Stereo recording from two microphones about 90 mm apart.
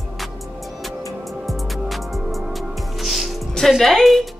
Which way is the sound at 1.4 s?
Centre (ahead or behind).